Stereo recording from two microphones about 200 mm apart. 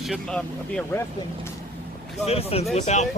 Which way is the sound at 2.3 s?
30° left (ahead or behind).